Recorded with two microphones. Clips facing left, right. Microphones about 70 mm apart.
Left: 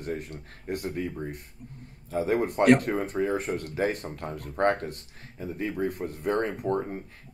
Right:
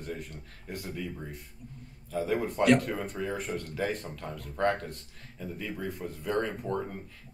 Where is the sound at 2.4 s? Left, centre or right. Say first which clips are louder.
Left 4 dB; left.